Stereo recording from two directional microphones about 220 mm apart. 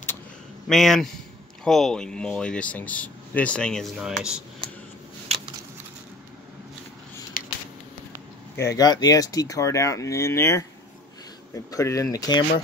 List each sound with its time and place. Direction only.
0.7 s speech: centre (ahead or behind)
7.3 s a sound: 40° left (ahead or behind)
8.7 s speech: 20° left (ahead or behind)